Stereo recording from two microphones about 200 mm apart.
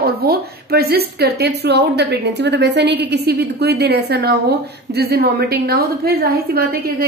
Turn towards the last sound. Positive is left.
turn(degrees=-50)  # may be behind; listen again after turning